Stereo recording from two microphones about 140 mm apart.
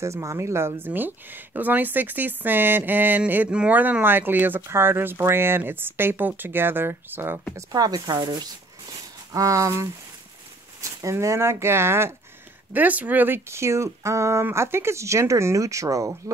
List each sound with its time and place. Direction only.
0.0 s speech: 20° right (ahead or behind)
7.5 s speech: 25° right (ahead or behind)